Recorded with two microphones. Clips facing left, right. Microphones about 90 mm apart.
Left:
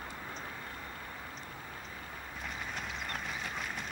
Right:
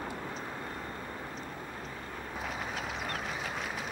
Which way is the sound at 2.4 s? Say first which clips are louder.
Right 3 dB; centre (ahead or behind).